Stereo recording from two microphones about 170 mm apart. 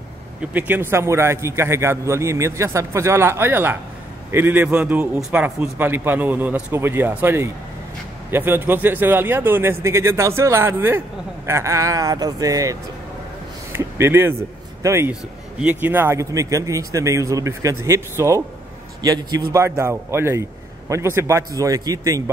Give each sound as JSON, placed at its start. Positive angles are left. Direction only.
{"t": 0.5, "sound": "a man's voice", "side_deg": -10}